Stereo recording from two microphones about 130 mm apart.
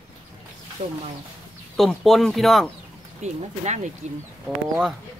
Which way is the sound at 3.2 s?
60° right (ahead or behind).